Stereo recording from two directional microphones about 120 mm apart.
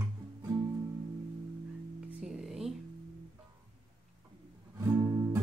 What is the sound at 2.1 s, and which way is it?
Music, 5° right (ahead or behind).